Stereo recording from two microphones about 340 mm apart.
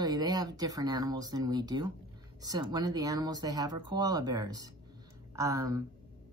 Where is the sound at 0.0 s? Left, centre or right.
Centre.